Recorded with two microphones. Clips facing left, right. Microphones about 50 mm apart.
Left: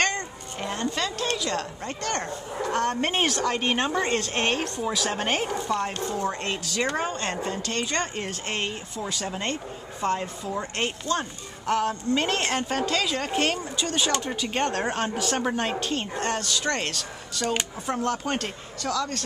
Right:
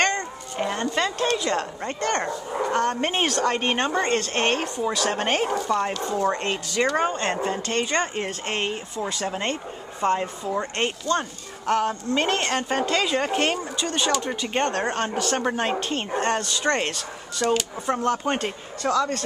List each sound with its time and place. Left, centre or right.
0.6 s speech: centre
2.7 s a woman's voice: centre
3.8 s a woman's voice: centre
6.0 s speech: right
11.1 s speech: centre
12.2 s a woman's voice: centre